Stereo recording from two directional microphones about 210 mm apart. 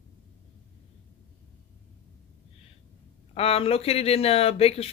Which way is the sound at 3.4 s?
25° left (ahead or behind).